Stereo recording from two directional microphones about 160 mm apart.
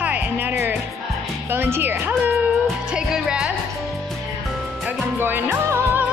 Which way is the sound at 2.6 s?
5° right (ahead or behind).